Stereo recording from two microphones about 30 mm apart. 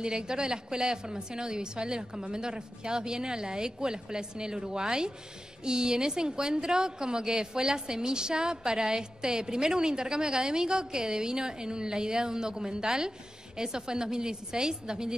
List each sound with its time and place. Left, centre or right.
0.0 s a woman's voice: right